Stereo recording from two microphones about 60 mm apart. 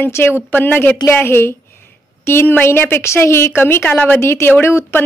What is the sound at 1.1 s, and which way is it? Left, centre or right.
Speech, left.